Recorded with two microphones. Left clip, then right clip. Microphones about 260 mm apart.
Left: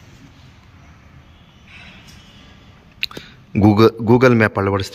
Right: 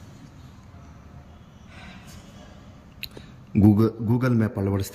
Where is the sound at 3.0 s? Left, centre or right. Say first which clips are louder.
Left 13 dB; centre.